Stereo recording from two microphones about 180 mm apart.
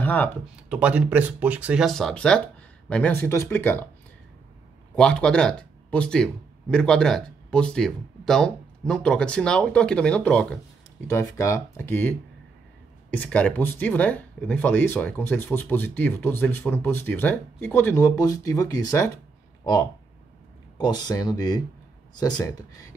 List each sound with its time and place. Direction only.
0.0 s speech: 10° left (ahead or behind)
0.7 s speech: 5° right (ahead or behind); by 3.9 s 10° left (ahead or behind)
4.9 s speech: 5° left (ahead or behind)
20.7 s speech: 25° left (ahead or behind)